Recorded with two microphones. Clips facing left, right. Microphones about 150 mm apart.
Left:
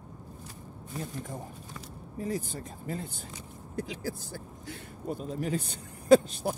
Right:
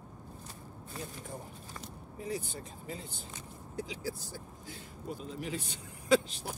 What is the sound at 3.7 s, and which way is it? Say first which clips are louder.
Speech: left 3 dB; 55° left (ahead or behind).